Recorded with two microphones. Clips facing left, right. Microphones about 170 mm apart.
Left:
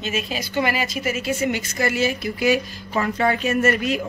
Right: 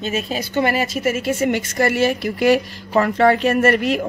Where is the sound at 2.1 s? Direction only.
60° right (ahead or behind).